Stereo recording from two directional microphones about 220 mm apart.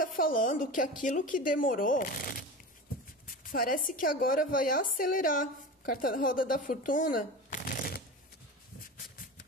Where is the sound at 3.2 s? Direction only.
40° left (ahead or behind).